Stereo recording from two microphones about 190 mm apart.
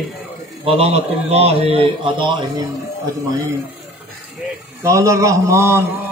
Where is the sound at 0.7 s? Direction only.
30° right (ahead or behind).